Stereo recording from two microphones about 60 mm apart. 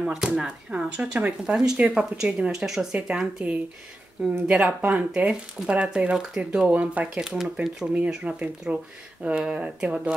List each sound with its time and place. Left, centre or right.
0.0 s speech: centre
4.5 s speech: right
6.7 s speech: right
7.2 s speech: centre
7.8 s speech: right